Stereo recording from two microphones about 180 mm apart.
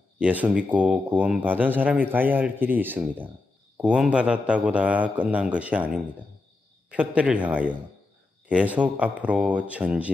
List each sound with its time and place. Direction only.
0.2 s speech: 10° right (ahead or behind)
6.9 s speech: 5° right (ahead or behind)